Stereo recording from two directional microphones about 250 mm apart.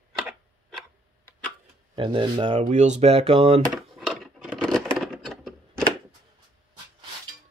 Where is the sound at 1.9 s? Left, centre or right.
Right.